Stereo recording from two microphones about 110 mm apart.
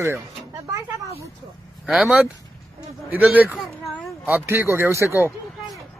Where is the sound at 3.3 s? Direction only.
15° right (ahead or behind).